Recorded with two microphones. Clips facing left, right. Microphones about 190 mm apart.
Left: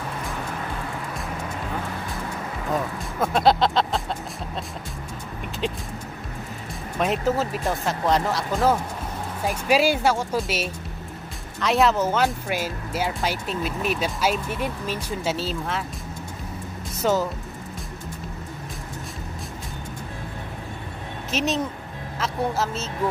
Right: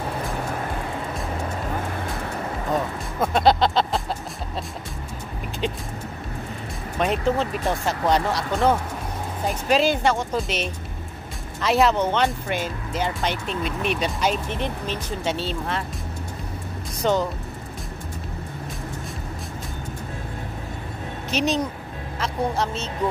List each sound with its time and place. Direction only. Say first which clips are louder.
2.7 s a sound: even; centre (ahead or behind)
5.6 s vehicle: right 1 dB; centre (ahead or behind)
7.0 s speech: right 1 dB; 5° left (ahead or behind)
17.0 s speech: even; 5° left (ahead or behind)
21.3 s speech: right 2 dB; centre (ahead or behind)